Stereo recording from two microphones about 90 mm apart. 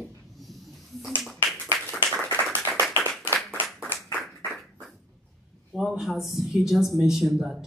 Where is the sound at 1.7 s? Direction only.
5° left (ahead or behind).